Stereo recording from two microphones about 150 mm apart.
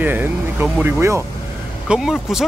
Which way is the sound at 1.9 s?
5° right (ahead or behind).